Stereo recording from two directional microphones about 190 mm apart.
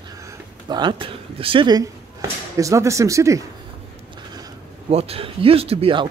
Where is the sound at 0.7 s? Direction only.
25° right (ahead or behind).